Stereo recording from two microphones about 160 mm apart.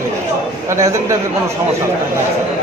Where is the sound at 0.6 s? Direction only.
20° right (ahead or behind).